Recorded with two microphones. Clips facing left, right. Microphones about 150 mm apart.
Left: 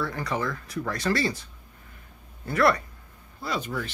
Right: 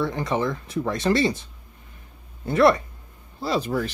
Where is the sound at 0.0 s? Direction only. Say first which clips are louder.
Right 5 dB; 20° right (ahead or behind).